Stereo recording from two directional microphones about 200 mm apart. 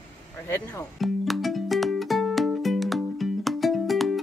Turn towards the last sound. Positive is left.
turn(degrees=0)  # may be behind; listen again after turning